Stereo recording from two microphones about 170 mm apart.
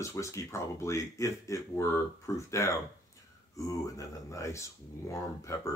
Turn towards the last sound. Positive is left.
turn(degrees=20)  # may be behind; listen again after turning